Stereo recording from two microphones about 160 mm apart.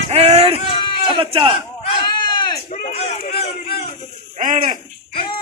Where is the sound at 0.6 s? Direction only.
30° left (ahead or behind).